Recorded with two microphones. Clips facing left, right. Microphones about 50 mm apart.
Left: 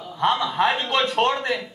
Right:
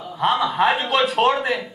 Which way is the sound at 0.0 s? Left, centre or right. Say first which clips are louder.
Right 2 dB; centre.